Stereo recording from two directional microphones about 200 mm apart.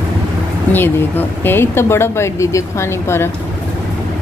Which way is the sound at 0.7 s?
10° left (ahead or behind).